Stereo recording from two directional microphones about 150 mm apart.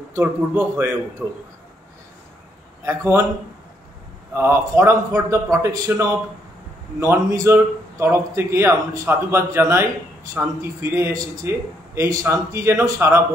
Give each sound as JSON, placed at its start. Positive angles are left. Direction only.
{"t": 0.1, "sound": "a man's voice", "side_deg": -15}
{"t": 2.8, "sound": "a man's voice", "side_deg": -20}
{"t": 4.3, "sound": "a man's voice", "side_deg": -15}